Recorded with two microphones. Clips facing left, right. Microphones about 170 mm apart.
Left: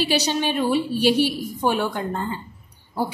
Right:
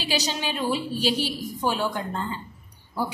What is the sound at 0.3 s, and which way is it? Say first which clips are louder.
A woman's voice: left 6 dB; 55° left (ahead or behind).